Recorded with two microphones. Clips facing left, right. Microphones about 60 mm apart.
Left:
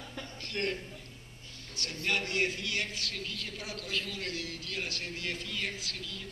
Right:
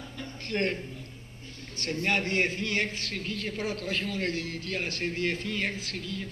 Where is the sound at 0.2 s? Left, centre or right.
Right.